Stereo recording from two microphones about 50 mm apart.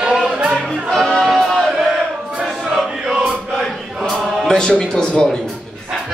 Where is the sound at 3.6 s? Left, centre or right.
Centre.